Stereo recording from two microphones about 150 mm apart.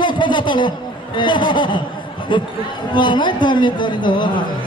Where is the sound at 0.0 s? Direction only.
30° left (ahead or behind).